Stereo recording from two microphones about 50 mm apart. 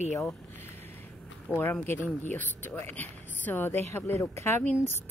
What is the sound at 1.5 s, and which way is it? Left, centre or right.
Speech, right.